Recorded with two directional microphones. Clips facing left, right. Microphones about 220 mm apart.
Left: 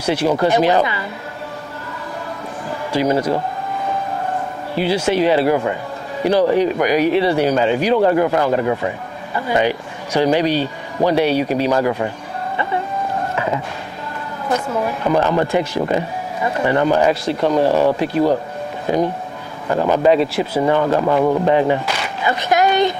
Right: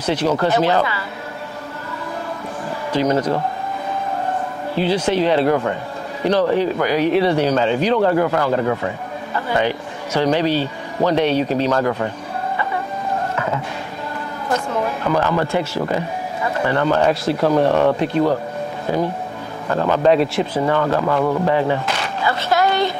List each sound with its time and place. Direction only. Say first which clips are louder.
0.0 s speech: left 2 dB; 10° left (ahead or behind)
2.9 s speech: left 1 dB; 10° left (ahead or behind)
4.7 s speech: left 1 dB; 10° left (ahead or behind)
7.1 s speech: left 1 dB; 5° left (ahead or behind)
14.5 s speech: left 1 dB; 15° left (ahead or behind)
17.1 s speech: even; centre (ahead or behind)
18.9 s speech: left 3 dB; 15° left (ahead or behind)
20.1 s speech: right 1 dB; centre (ahead or behind)
20.6 s speech: left 3 dB; 15° left (ahead or behind)